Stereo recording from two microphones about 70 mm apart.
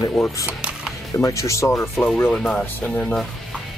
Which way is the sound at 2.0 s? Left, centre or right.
Left.